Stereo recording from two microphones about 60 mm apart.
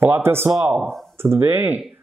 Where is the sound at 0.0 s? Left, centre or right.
Right.